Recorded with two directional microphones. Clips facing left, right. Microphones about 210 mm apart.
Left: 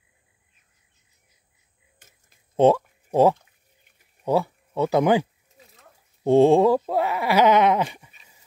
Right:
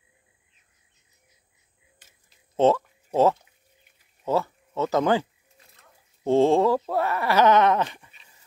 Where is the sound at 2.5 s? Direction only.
15° left (ahead or behind).